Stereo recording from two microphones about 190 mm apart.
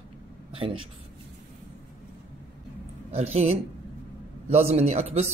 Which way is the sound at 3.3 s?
35° right (ahead or behind).